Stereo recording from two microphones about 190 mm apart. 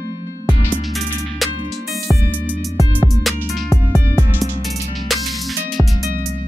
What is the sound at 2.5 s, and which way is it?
Music, centre (ahead or behind).